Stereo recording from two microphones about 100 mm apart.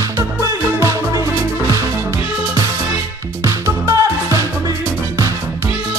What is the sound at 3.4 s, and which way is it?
Music, 30° right (ahead or behind).